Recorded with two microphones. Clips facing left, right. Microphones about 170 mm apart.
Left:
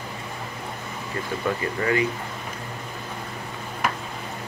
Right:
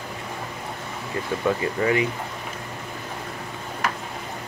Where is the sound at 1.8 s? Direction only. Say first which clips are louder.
Right 1 dB; 20° right (ahead or behind).